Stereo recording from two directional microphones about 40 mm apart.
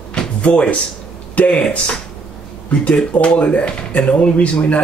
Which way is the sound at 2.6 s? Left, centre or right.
Left.